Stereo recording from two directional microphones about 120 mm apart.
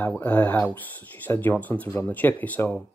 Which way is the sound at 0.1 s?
15° left (ahead or behind).